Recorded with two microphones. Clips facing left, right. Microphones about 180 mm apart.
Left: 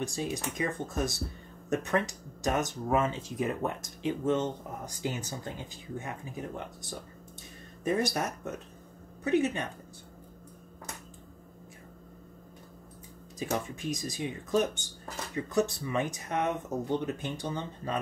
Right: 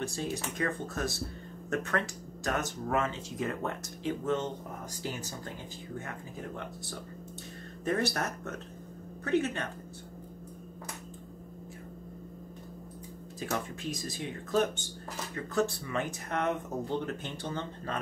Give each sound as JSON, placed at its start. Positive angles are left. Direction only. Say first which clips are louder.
{"t": 0.0, "sound": "speech", "louder": "left 1 dB", "side_deg": 15}
{"t": 13.4, "sound": "speech", "louder": "left 2 dB", "side_deg": 15}